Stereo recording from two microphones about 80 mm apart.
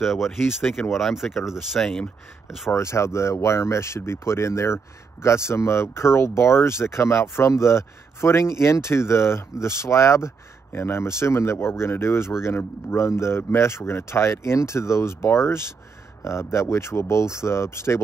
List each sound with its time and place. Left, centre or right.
0.0 s speech: centre
2.7 s speech: left